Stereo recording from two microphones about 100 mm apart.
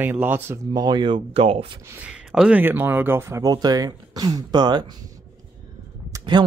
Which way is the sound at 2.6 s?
20° right (ahead or behind).